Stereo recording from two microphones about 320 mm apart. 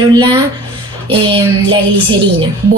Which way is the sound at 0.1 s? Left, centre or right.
Centre.